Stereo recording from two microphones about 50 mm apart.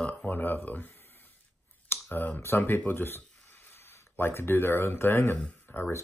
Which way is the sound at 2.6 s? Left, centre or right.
Left.